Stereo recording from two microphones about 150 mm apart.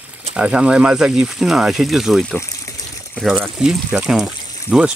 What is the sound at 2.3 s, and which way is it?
Water, 20° left (ahead or behind).